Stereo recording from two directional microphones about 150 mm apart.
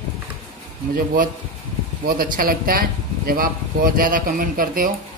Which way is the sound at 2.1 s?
75° right (ahead or behind).